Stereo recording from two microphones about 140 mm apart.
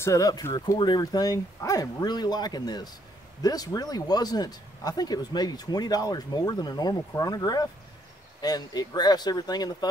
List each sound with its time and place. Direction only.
0.0 s speech: 25° left (ahead or behind)